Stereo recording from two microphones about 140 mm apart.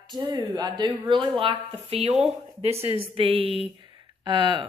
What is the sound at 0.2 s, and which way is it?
Speech, 30° right (ahead or behind).